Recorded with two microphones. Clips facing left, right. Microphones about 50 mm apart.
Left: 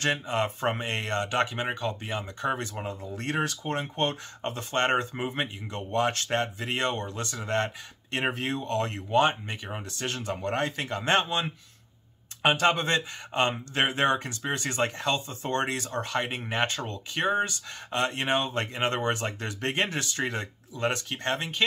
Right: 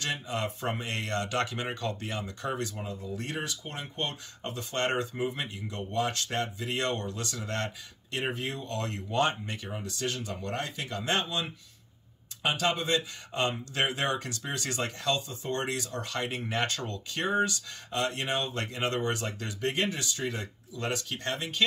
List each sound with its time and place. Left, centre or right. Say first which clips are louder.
0.0 s speech: left 5 dB; left
2.5 s speech: left 2 dB; left